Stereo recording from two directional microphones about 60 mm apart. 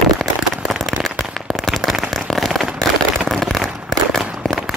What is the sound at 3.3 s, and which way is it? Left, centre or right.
Fireworks, centre.